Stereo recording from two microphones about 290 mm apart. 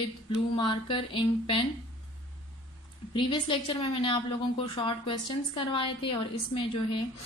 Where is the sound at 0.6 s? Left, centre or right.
Centre.